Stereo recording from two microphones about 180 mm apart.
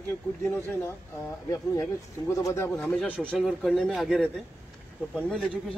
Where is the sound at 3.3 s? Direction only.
Centre (ahead or behind).